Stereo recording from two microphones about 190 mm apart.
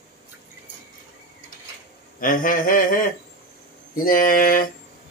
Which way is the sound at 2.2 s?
45° left (ahead or behind).